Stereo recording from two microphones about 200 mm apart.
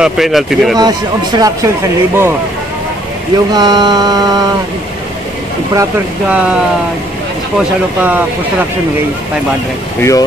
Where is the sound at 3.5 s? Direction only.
20° right (ahead or behind).